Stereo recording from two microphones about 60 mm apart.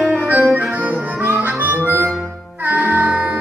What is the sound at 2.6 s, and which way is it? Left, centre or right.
Music, right.